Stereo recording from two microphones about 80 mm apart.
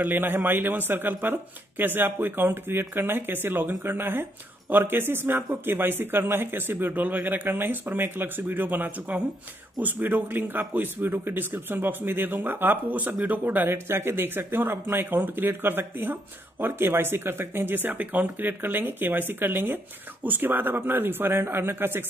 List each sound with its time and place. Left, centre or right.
0.0 s speech: right